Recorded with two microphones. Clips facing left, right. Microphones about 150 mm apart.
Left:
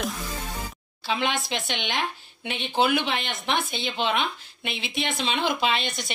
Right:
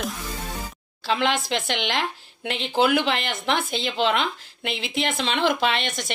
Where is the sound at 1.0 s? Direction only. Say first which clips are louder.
Right 4 dB; 90° right.